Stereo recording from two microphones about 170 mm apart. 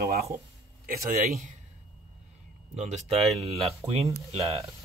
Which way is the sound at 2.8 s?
40° right (ahead or behind).